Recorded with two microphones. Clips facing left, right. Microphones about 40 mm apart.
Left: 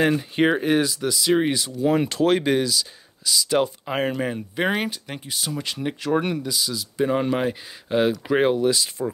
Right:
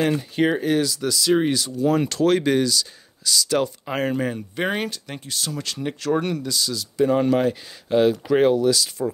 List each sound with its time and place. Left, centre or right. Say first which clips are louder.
0.4 s speech: left 1 dB; left